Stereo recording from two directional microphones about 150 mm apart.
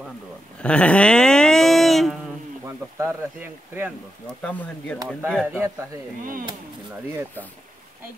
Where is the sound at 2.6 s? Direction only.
15° right (ahead or behind).